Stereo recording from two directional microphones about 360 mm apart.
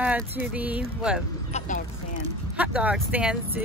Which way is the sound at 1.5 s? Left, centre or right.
Centre.